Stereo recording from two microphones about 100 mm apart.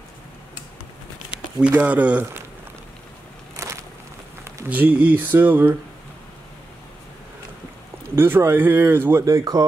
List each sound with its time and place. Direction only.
1.6 s speech: 15° right (ahead or behind)
3.5 s a sound: 30° right (ahead or behind)
4.6 s speech: 15° right (ahead or behind)
8.2 s speech: 25° right (ahead or behind)
9.2 s speech: 40° right (ahead or behind)